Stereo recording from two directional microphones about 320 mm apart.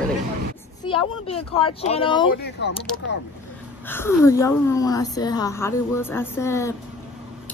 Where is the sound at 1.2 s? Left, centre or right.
Centre.